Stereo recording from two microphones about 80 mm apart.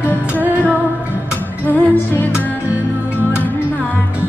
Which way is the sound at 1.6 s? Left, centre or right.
Left.